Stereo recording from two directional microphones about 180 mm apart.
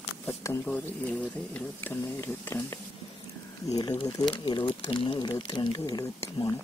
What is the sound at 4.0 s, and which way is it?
Speech, 25° left (ahead or behind).